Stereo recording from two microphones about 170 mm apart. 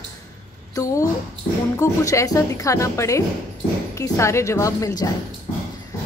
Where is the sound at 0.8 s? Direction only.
20° left (ahead or behind).